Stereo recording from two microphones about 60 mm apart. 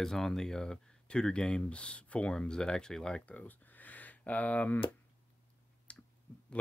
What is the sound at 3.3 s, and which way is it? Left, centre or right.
Speech, left.